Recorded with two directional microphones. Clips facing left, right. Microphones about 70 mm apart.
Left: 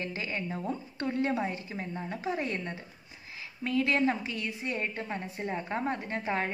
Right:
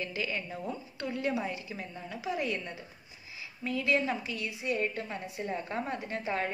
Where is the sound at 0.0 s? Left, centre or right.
Left.